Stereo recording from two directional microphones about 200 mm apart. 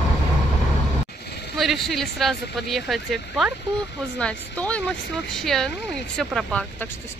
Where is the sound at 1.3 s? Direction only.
55° left (ahead or behind).